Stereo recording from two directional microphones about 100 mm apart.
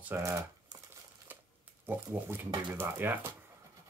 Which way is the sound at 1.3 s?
20° right (ahead or behind).